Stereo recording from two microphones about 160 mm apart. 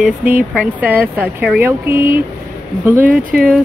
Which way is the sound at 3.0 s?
60° right (ahead or behind).